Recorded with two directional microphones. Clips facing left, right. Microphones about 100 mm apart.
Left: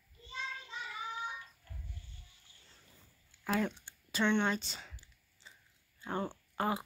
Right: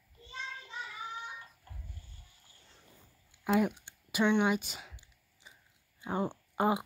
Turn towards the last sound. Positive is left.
turn(degrees=-20)  # may be behind; listen again after turning